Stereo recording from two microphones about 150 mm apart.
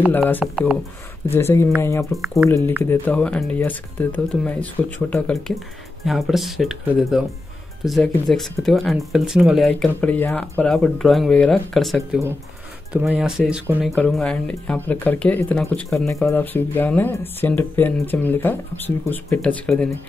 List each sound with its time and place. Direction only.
0.4 s speech: 5° right (ahead or behind)
1.3 s speech: 15° left (ahead or behind)
2.1 s speech: centre (ahead or behind)
2.8 s speech: 10° left (ahead or behind); by 13.9 s 5° right (ahead or behind)
13.9 s speech: 5° left (ahead or behind)